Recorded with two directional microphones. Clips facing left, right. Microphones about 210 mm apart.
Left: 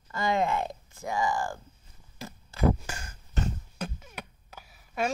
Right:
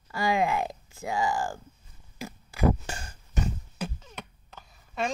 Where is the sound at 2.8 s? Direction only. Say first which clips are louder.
Right 2 dB; 30° right (ahead or behind).